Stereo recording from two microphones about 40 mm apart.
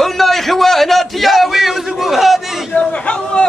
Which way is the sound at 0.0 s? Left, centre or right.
Centre.